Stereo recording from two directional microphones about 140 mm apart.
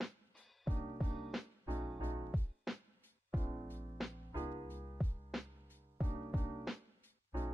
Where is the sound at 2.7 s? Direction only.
Centre (ahead or behind).